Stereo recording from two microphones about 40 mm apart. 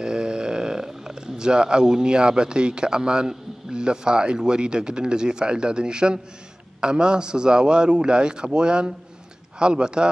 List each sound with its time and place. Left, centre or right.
0.0 s a man's voice: centre